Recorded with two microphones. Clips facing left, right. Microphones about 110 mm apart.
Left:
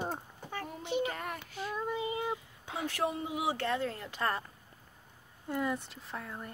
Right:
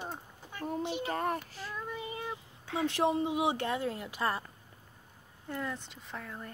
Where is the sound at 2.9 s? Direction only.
25° right (ahead or behind); by 4.5 s 5° right (ahead or behind).